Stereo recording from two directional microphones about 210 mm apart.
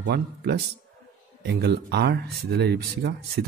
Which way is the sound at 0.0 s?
50° right (ahead or behind).